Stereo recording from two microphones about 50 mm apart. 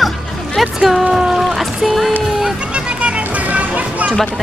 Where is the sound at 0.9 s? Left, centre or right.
Centre.